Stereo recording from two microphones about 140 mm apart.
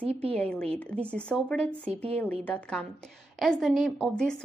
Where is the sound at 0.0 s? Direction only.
45° right (ahead or behind).